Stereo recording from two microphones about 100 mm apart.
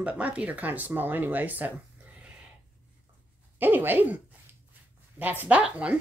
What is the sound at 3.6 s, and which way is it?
Speech, 20° right (ahead or behind).